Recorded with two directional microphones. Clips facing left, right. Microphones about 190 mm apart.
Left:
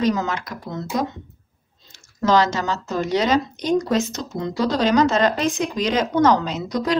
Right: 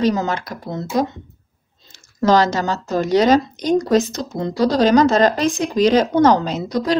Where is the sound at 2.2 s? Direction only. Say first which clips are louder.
Right 3 dB; 40° right (ahead or behind).